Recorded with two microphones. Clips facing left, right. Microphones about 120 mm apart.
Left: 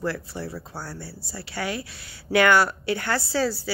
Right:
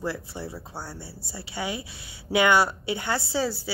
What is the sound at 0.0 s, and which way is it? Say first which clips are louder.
Speech: left 2 dB; 20° right (ahead or behind).